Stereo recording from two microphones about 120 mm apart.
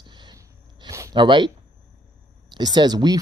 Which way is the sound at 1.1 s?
40° right (ahead or behind).